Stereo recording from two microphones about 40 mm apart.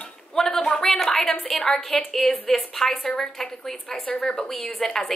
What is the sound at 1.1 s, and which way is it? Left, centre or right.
A woman's voice, centre.